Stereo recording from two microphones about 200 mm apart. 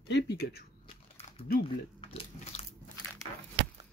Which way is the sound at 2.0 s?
30° left (ahead or behind).